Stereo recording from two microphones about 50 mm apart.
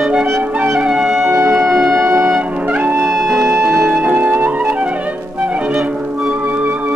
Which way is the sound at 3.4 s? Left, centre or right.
Right.